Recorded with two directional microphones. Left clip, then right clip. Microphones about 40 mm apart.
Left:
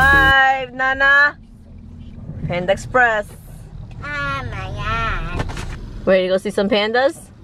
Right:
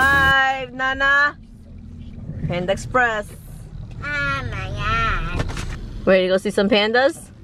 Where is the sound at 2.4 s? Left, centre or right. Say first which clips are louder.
Left 3 dB; centre.